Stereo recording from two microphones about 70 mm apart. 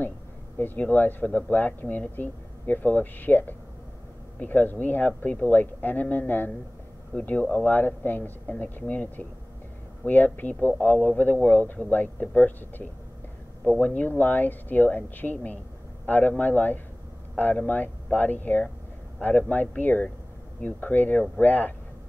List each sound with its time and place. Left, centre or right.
0.6 s speech: left